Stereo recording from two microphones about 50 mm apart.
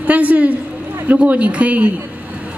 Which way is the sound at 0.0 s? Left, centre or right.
Right.